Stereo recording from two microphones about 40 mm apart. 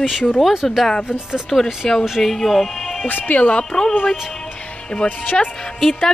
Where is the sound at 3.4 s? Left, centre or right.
Left.